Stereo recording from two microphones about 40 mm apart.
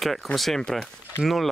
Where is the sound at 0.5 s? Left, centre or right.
Centre.